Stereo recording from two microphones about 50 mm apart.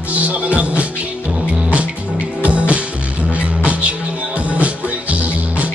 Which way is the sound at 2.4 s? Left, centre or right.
Right.